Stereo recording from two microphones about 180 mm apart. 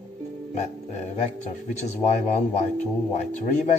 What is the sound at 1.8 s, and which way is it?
Speech, 40° left (ahead or behind).